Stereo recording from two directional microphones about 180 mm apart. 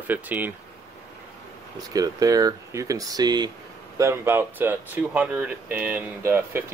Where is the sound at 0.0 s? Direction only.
10° right (ahead or behind).